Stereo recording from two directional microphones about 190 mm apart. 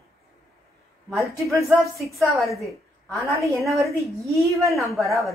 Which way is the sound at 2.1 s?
Centre (ahead or behind).